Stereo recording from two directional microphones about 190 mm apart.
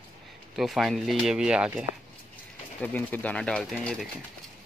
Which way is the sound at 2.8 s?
10° left (ahead or behind).